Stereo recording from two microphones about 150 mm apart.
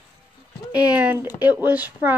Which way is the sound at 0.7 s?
10° right (ahead or behind).